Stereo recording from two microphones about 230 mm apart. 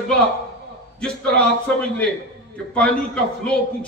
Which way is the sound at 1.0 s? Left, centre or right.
Centre.